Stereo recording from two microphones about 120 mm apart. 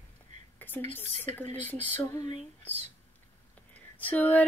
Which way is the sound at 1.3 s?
15° left (ahead or behind).